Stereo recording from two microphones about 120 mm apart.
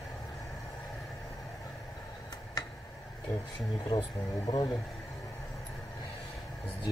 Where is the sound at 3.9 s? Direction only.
40° left (ahead or behind).